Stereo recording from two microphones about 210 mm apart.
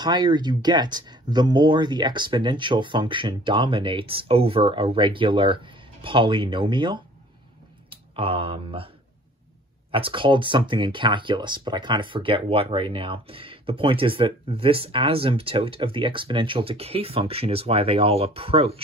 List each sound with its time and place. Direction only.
0.0 s speech: 20° right (ahead or behind)